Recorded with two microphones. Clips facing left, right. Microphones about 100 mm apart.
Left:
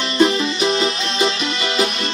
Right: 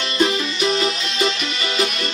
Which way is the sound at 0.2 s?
25° left (ahead or behind).